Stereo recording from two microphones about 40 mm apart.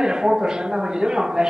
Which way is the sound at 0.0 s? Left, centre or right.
Centre.